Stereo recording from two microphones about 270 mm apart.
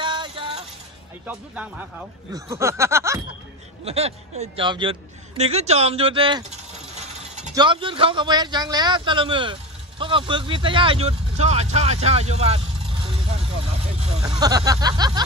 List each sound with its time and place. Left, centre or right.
0.0 s music: centre
1.2 s speech: centre
2.3 s a sound: centre
3.8 s a man's voice: right
7.5 s a man's voice: centre
13.0 s vehicle: right